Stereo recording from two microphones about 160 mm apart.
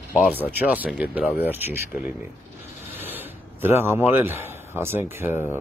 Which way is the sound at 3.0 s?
10° right (ahead or behind).